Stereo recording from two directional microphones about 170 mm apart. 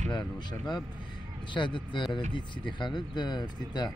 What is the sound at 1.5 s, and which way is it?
Speech, 30° left (ahead or behind).